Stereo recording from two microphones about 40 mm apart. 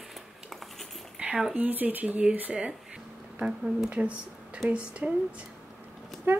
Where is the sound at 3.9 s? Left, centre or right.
Right.